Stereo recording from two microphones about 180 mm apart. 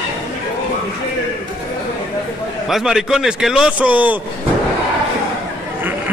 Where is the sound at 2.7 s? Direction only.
Centre (ahead or behind).